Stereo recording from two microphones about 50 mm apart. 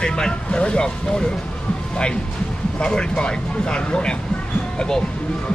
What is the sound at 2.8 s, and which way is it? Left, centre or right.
Speech, centre.